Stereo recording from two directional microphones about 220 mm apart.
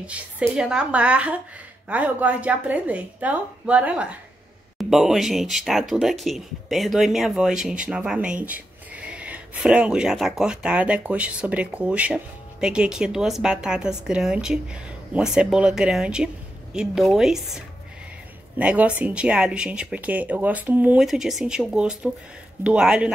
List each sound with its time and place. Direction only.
0.0 s a woman's voice: 5° right (ahead or behind)